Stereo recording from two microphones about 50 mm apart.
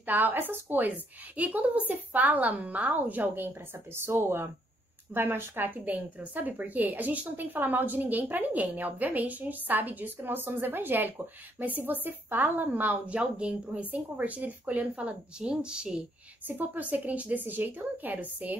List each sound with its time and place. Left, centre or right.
0.0 s a woman's voice: right
3.4 s a woman's voice: right; by 16.0 s centre
16.4 s a woman's voice: right